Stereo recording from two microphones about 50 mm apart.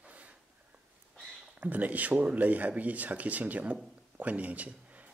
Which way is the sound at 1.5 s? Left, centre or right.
Right.